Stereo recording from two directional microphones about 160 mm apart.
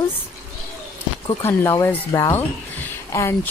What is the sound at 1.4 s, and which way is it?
Speech, 15° left (ahead or behind).